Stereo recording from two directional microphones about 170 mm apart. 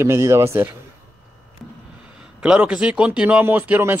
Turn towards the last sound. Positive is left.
turn(degrees=-10)  # may be behind; listen again after turning